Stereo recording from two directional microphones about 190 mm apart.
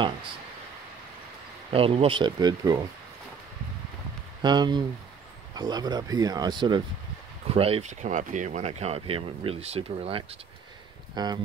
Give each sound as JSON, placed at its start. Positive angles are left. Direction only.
{"t": 1.7, "sound": "speech", "side_deg": -30}
{"t": 4.4, "sound": "speech", "side_deg": -25}